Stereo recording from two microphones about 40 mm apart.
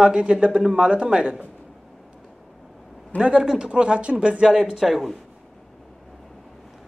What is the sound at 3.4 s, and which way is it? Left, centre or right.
Speech, centre.